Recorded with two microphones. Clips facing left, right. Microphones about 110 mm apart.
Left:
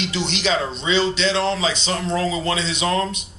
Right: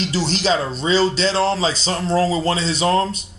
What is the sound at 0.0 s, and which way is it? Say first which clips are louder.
Speech: right 3 dB; 35° right (ahead or behind).